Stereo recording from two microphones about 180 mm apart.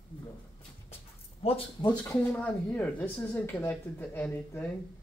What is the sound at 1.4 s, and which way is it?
Speech, 35° left (ahead or behind).